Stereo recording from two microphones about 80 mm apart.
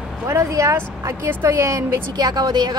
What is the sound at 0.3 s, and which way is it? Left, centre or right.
Speech, right.